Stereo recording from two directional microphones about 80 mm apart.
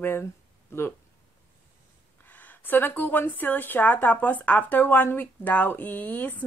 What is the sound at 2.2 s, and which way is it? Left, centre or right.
Speech, left.